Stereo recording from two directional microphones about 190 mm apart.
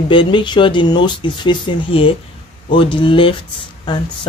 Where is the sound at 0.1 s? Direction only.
25° left (ahead or behind).